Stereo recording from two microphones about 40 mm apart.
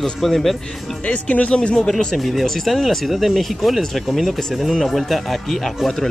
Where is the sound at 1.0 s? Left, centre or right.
Left.